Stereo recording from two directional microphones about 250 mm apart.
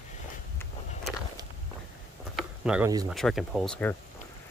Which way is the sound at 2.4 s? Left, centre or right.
Centre.